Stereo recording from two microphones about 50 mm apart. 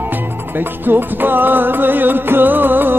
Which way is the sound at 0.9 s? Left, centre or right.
Right.